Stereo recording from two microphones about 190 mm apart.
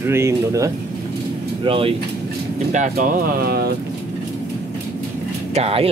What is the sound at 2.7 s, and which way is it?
Speech, 40° right (ahead or behind).